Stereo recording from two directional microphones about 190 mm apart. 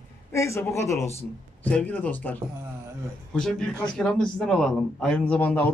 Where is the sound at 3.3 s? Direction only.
5° left (ahead or behind).